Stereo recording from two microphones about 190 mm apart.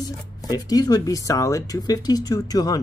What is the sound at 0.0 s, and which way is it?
Speech, 20° left (ahead or behind).